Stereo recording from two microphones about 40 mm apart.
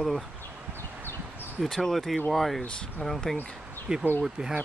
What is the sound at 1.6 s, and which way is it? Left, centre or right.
Speech, centre.